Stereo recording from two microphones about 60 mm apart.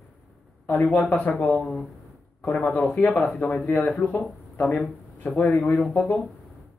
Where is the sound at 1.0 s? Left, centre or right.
Left.